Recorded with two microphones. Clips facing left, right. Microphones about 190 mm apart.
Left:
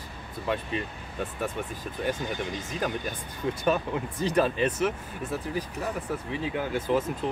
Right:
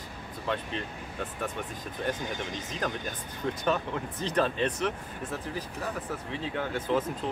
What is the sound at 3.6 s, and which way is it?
Speech, 10° left (ahead or behind).